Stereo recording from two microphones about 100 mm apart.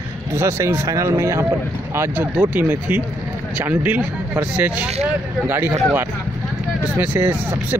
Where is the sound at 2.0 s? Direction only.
15° right (ahead or behind).